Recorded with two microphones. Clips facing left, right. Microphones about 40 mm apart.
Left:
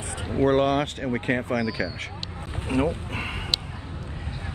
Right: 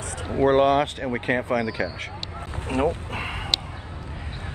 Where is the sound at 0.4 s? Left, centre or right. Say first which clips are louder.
Right 3 dB; centre.